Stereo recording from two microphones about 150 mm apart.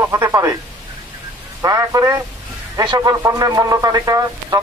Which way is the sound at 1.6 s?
25° right (ahead or behind).